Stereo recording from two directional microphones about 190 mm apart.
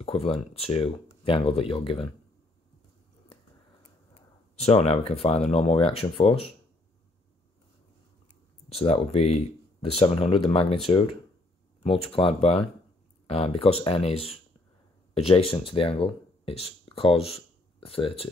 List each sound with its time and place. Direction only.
0.0 s speech: 30° left (ahead or behind)
4.6 s speech: 35° left (ahead or behind)
8.6 s speech: 30° left (ahead or behind)